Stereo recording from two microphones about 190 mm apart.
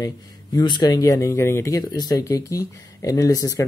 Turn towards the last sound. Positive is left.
turn(degrees=20)  # may be behind; listen again after turning